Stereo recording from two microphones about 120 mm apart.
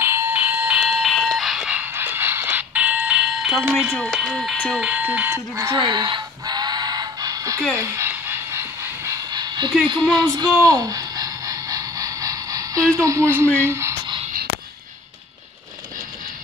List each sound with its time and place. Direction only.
0.0 s fire alarm: 20° right (ahead or behind); by 4.6 s centre (ahead or behind)
4.7 s speech: 10° right (ahead or behind)
5.7 s music: 40° right (ahead or behind)
7.7 s speech: 25° right (ahead or behind)
8.1 s train: 20° right (ahead or behind)
9.3 s dog: 35° right (ahead or behind)
10.2 s a sound: 30° right (ahead or behind)
12.9 s speech: 25° right (ahead or behind)